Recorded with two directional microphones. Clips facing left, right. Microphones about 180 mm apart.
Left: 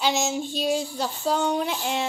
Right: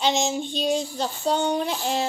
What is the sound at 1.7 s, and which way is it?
Speech, 35° right (ahead or behind).